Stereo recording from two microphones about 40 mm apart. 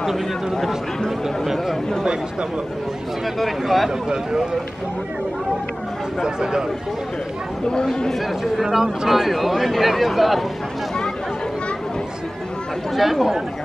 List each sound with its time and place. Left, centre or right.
0.0 s speech: centre
3.3 s speech: centre
4.1 s speech: right
6.2 s speech: centre
7.8 s speech: centre
8.5 s speech: centre
12.9 s speech: centre